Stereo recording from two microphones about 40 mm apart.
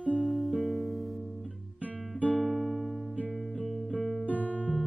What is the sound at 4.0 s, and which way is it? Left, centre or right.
Music, centre.